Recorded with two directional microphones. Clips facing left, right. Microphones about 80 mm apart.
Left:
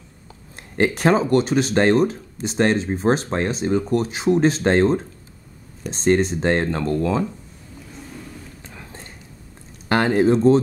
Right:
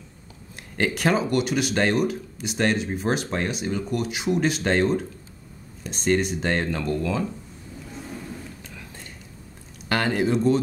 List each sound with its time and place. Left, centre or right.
0.7 s speech: left
8.6 s whispering: left
9.8 s speech: left